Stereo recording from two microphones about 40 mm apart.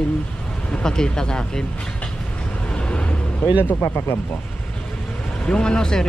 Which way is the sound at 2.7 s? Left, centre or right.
Left.